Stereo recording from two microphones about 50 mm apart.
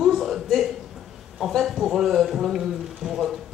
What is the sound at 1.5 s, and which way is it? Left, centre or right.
Speech, centre.